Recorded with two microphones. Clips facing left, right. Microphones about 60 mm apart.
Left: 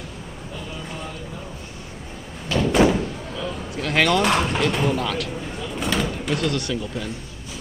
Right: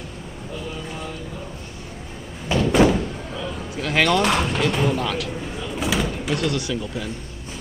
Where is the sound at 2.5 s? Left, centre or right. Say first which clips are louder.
Right 1 dB; centre.